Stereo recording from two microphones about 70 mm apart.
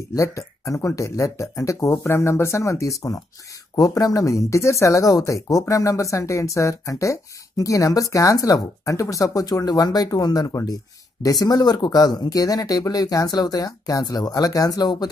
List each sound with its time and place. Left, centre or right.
0.1 s speech: left
9.7 s speech: left